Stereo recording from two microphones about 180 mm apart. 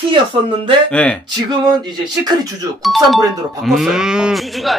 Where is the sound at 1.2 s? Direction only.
25° right (ahead or behind).